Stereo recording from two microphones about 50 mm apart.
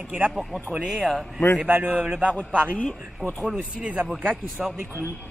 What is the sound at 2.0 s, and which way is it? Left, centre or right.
Speech, right.